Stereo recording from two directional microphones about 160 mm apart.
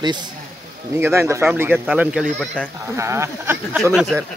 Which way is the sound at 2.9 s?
15° right (ahead or behind).